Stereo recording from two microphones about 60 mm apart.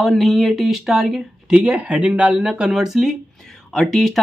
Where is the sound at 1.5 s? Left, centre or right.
Right.